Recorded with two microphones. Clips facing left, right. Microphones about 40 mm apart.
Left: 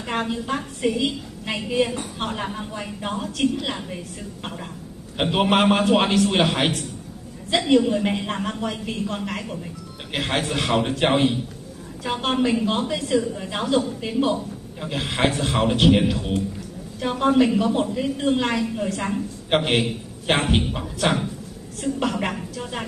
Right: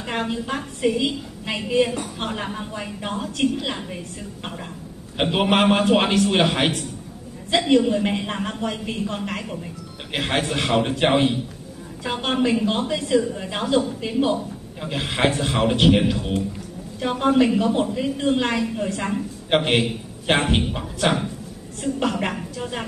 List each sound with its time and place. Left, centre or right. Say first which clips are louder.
0.0 s a woman's voice: even; centre
5.1 s a woman's voice: even; centre